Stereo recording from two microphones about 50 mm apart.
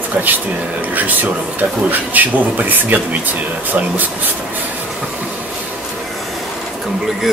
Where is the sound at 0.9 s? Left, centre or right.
Right.